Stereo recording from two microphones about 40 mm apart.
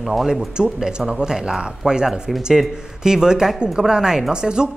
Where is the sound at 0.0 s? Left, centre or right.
Centre.